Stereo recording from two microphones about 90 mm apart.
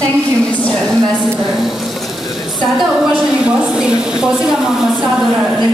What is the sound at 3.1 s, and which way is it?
A woman's voice, 10° right (ahead or behind).